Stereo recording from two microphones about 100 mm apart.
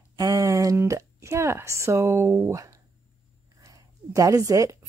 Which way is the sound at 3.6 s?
35° right (ahead or behind).